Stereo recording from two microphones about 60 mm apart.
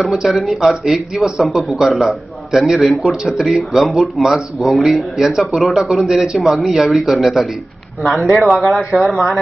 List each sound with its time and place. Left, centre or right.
0.0 s speech: centre
8.4 s speech: centre
8.6 s speech: centre